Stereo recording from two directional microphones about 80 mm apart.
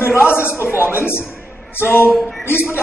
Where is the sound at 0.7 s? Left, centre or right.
Left.